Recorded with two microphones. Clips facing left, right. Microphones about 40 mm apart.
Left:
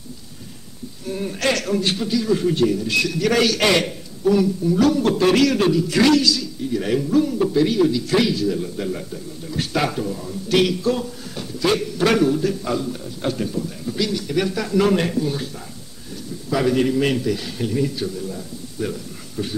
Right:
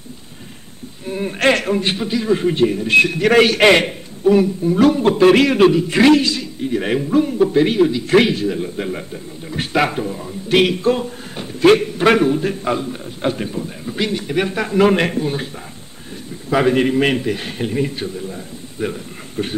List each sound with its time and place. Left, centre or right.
1.0 s a man's voice: right